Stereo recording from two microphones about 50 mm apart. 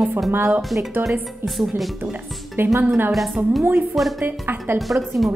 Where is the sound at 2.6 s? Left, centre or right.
Right.